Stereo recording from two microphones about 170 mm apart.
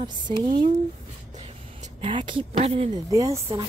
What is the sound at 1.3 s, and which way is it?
Vehicle, 45° right (ahead or behind).